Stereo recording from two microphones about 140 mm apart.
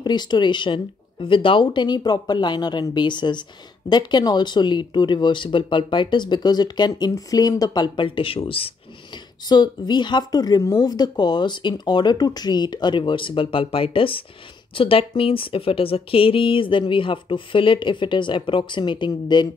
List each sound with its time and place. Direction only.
0.0 s speech: 30° left (ahead or behind)
9.5 s speech: 30° left (ahead or behind)